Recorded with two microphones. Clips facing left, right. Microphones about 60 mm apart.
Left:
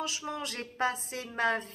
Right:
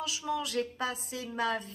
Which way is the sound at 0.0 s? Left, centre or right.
Left.